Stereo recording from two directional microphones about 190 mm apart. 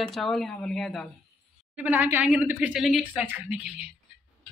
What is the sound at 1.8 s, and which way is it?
A woman's voice, 10° right (ahead or behind).